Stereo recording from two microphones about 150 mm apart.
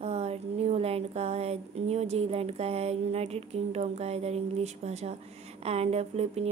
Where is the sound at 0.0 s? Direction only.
45° right (ahead or behind).